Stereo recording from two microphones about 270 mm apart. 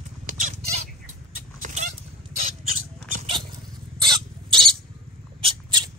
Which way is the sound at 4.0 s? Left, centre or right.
Centre.